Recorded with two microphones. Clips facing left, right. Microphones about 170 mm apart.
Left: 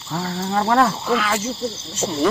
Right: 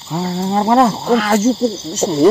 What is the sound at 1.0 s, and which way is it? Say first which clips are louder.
Speech: right 8 dB; 45° right (ahead or behind).